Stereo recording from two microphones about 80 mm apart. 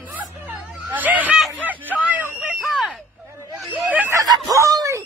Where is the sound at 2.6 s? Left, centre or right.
Centre.